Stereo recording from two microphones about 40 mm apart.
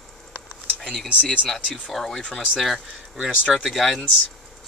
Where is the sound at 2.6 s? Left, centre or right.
Centre.